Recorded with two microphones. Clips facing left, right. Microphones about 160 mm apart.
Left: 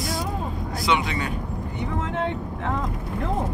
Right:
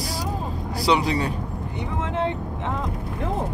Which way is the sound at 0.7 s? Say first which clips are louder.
Right 3 dB; 35° right (ahead or behind).